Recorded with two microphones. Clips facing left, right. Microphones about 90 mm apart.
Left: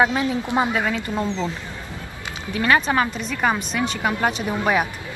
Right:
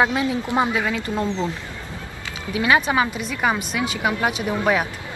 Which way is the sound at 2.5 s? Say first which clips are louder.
Even; 10° right (ahead or behind).